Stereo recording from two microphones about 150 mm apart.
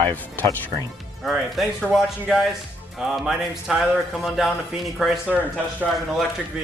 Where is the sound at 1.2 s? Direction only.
Centre (ahead or behind).